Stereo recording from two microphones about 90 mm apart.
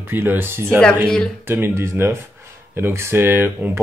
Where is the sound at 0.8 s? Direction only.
10° left (ahead or behind).